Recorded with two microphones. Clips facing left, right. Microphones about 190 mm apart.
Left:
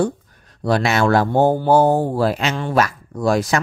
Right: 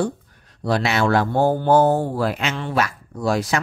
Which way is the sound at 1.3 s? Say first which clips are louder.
Left 3 dB; 20° left (ahead or behind).